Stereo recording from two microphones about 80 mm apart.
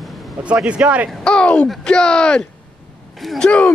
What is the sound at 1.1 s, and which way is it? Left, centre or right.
A man's voice, centre.